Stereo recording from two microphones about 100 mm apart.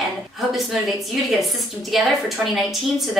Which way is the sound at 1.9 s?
Centre (ahead or behind).